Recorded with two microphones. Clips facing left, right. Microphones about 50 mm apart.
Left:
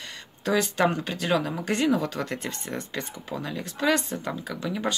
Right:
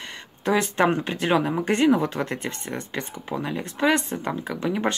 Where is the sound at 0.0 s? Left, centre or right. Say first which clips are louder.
Right 3 dB; right.